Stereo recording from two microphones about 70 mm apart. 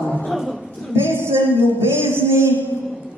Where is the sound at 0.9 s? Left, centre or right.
Right.